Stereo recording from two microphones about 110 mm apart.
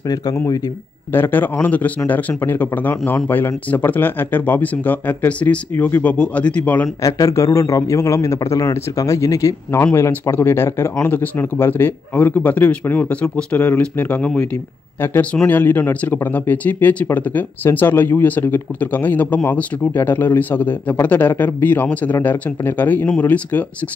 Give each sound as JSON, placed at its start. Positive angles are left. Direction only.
{"t": 1.1, "sound": "speech", "side_deg": 20}
{"t": 7.0, "sound": "a man's voice", "side_deg": 30}